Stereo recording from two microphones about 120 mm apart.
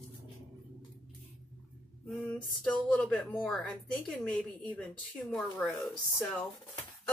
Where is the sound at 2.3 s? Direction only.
10° left (ahead or behind).